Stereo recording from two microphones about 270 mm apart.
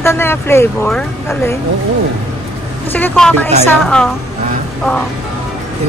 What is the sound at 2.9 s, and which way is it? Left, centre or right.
Speech, centre.